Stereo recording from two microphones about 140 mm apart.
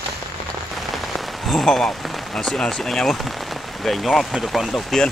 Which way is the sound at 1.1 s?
Centre (ahead or behind).